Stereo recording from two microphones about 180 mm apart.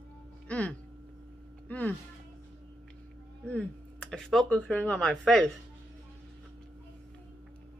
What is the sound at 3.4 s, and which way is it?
Speech, 5° left (ahead or behind).